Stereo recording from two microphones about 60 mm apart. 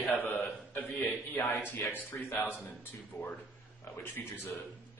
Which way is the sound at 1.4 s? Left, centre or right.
Left.